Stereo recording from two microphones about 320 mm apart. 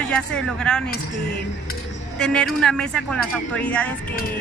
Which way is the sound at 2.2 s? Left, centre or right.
Centre.